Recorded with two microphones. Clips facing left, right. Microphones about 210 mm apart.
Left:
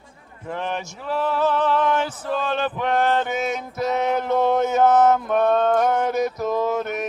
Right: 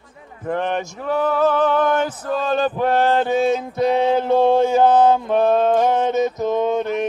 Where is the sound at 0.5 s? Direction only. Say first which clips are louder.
Right 6 dB; 60° right (ahead or behind).